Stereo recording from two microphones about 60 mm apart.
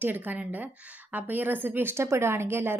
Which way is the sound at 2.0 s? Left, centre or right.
Right.